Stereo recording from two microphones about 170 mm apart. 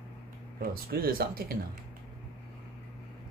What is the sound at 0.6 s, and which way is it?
Speech, 60° right (ahead or behind).